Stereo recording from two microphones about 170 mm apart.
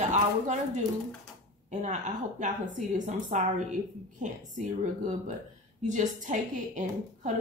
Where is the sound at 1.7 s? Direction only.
45° right (ahead or behind).